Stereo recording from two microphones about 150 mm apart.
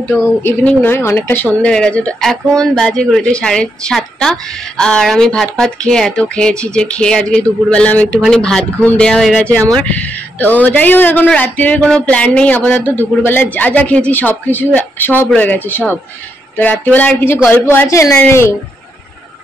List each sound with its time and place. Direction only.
0.1 s a woman's voice: 15° left (ahead or behind)